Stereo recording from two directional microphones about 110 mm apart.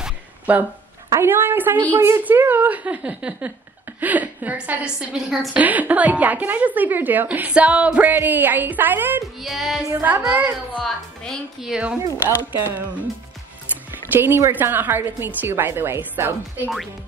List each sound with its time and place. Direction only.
0.0 s a sound: 15° right (ahead or behind)
1.1 s a woman's voice: 20° right (ahead or behind)
9.2 s music: centre (ahead or behind)
10.2 s a woman's voice: 15° right (ahead or behind)
10.7 s a woman's voice: 10° left (ahead or behind)
11.6 s music: 5° right (ahead or behind)
12.6 s a woman's voice: 20° right (ahead or behind)
14.1 s a woman's voice: 20° right (ahead or behind)